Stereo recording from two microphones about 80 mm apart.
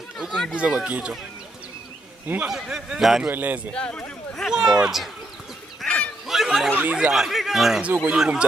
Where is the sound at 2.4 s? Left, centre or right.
Centre.